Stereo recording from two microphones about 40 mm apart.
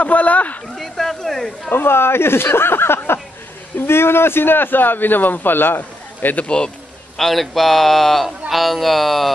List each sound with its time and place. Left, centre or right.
0.0 s speech: left
0.7 s speech: centre
1.7 s a man's voice: left
6.3 s speech: left
7.2 s speech: centre